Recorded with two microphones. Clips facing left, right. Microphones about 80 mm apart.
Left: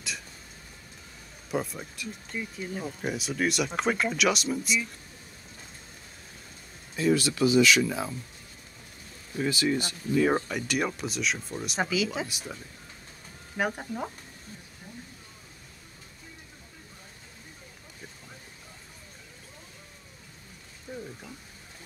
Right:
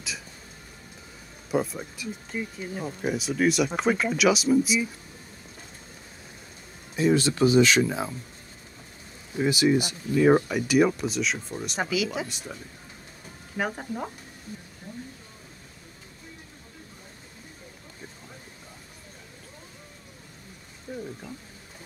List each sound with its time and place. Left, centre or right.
1.5 s speech: centre
7.0 s speech: right
9.3 s speech: centre
13.7 s speech: centre